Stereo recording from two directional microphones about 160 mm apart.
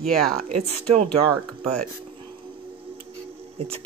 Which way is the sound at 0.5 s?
45° right (ahead or behind).